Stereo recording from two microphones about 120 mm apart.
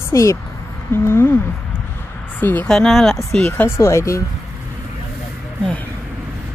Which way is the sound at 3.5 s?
20° left (ahead or behind).